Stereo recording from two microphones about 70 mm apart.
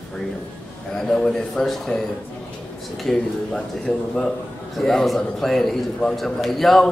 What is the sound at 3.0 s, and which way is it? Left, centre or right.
A man's voice, centre.